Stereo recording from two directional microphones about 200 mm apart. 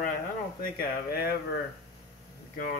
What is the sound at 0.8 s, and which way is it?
Speech, 50° left (ahead or behind).